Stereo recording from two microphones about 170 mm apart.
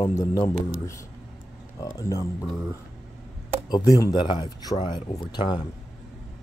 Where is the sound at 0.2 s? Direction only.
20° left (ahead or behind).